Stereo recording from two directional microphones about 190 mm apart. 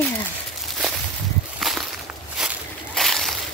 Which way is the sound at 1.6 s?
Centre (ahead or behind).